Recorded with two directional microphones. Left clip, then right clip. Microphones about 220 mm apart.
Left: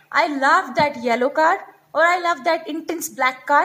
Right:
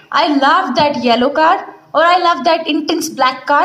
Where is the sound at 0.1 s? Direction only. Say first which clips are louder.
Right 5 dB; 40° left (ahead or behind).